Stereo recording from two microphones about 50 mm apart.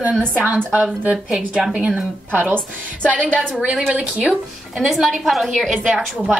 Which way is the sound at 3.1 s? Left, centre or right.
Right.